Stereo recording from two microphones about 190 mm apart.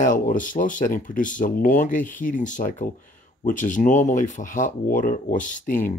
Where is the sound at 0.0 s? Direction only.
45° left (ahead or behind).